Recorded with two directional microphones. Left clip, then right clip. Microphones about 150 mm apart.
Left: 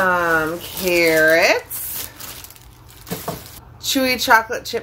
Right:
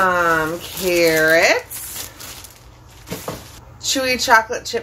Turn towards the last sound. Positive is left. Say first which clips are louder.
# right 1 dB
turn(degrees=55)  # may be behind; listen again after turning